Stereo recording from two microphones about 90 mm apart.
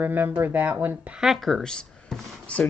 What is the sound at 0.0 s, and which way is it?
Speech, 20° right (ahead or behind).